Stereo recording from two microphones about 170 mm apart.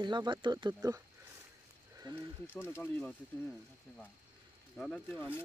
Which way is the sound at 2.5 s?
10° left (ahead or behind).